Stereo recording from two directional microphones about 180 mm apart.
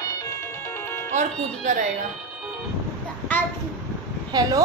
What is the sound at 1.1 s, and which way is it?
Speech, 45° right (ahead or behind).